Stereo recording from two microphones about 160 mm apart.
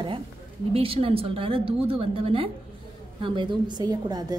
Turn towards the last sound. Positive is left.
turn(degrees=-25)  # may be behind; listen again after turning